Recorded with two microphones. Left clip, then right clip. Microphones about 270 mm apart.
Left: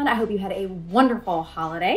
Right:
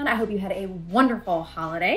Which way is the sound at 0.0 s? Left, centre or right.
Centre.